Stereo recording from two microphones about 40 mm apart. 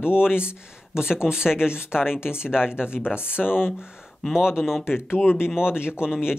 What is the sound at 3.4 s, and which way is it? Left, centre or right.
Speech, centre.